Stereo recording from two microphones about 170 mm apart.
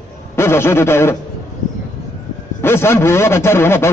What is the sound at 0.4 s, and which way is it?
Speech, 15° left (ahead or behind).